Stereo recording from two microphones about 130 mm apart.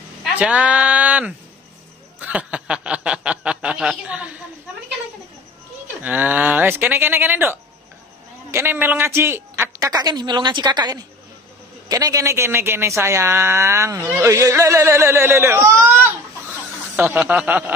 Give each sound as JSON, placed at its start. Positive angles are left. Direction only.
{"t": 0.4, "sound": "speech", "side_deg": -10}
{"t": 2.1, "sound": "snicker", "side_deg": -10}
{"t": 6.0, "sound": "a woman's voice", "side_deg": -15}